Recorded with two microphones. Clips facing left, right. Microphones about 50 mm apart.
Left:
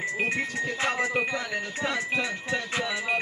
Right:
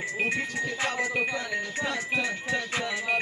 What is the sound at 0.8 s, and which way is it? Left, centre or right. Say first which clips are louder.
Speech: left 3 dB; left.